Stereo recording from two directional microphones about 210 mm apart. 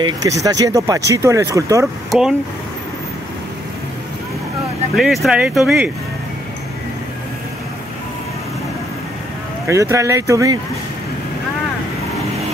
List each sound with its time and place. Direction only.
0.0 s speech: 15° right (ahead or behind)
2.0 s speech: 5° right (ahead or behind)
4.9 s speech: centre (ahead or behind)
9.7 s speech: 15° right (ahead or behind)